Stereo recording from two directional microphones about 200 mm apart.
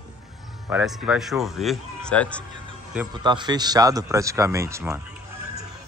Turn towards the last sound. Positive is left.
turn(degrees=-15)  # may be behind; listen again after turning